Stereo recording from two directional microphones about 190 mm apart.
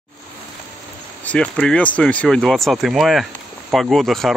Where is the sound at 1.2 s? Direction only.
5° left (ahead or behind).